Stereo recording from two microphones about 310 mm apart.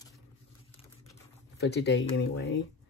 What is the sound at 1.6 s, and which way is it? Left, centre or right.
Speech, left.